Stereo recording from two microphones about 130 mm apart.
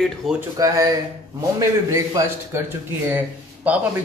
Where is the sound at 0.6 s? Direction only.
30° right (ahead or behind).